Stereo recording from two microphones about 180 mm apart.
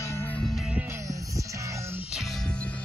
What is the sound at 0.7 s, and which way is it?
Music, 15° right (ahead or behind).